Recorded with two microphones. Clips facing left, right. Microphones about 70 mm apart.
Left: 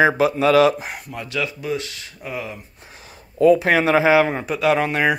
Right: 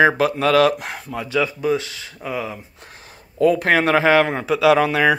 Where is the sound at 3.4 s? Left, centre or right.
Right.